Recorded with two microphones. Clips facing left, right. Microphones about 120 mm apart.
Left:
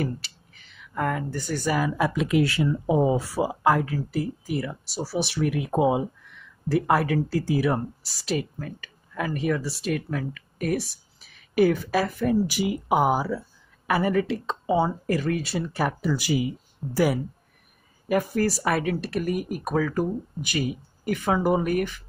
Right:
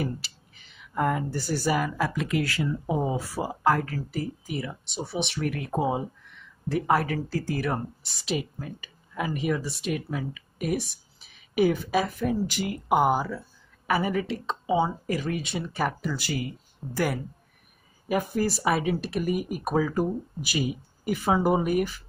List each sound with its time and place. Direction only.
0.9 s speech: 10° right (ahead or behind)
1.9 s speech: 15° left (ahead or behind)
6.7 s speech: 5° left (ahead or behind)
8.4 s speech: 5° right (ahead or behind)
12.4 s speech: 10° left (ahead or behind)
18.0 s speech: 5° right (ahead or behind)